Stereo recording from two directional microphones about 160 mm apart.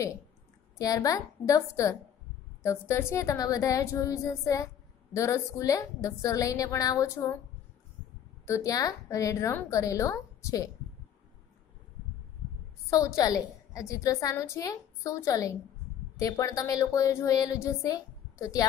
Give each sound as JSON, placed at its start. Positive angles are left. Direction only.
{"t": 0.7, "sound": "a woman's voice", "side_deg": 20}
{"t": 8.5, "sound": "a woman's voice", "side_deg": 20}
{"t": 12.9, "sound": "a woman's voice", "side_deg": 20}